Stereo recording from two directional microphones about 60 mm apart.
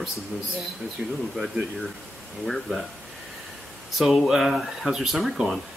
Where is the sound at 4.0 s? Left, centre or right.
Centre.